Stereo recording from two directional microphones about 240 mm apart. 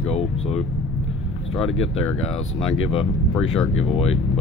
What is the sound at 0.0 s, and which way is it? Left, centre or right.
Music, left.